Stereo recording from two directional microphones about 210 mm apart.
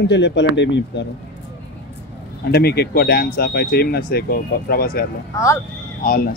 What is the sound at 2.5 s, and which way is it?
Speech, 50° left (ahead or behind).